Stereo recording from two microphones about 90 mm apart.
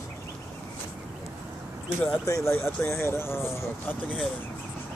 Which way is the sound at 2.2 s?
40° left (ahead or behind).